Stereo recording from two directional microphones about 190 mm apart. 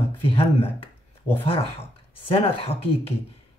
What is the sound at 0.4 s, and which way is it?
Speech, 30° left (ahead or behind).